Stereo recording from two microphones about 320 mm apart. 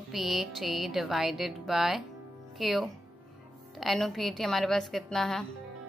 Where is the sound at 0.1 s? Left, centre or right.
Centre.